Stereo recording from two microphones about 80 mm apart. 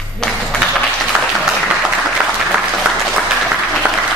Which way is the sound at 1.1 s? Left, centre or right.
Centre.